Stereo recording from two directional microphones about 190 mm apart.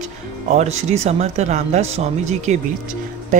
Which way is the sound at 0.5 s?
35° right (ahead or behind).